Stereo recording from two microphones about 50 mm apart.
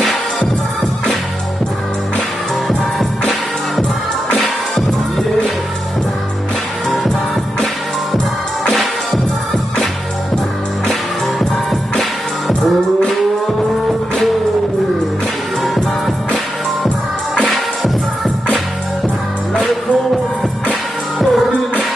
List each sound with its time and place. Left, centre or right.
3.0 s music: centre
10.9 s music: centre
17.5 s music: centre
21.2 s music: centre